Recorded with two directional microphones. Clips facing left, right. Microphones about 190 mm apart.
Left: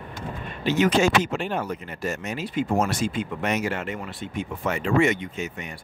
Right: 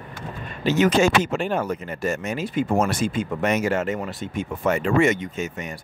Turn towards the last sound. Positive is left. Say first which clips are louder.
# right 3 dB
turn(degrees=-45)  # may be behind; listen again after turning